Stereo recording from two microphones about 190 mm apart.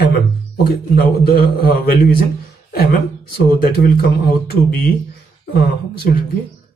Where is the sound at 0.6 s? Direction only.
55° left (ahead or behind).